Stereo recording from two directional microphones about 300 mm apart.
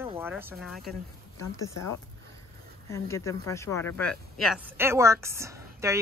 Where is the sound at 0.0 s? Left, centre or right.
Centre.